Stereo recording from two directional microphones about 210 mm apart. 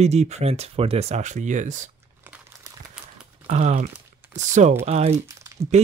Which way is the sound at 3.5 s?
35° right (ahead or behind).